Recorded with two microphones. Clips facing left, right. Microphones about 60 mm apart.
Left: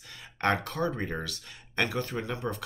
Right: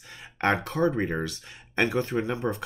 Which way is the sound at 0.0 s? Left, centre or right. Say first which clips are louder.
Right 2 dB; right.